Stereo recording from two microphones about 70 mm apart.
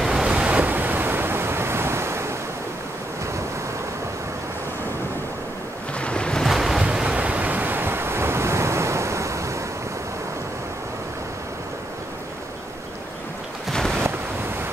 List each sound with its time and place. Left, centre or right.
0.1 s waves: centre
0.6 s waves: right
5.9 s ocean: centre
6.4 s waves: centre
6.8 s waves: centre; by 9.6 s right
13.7 s a sound: centre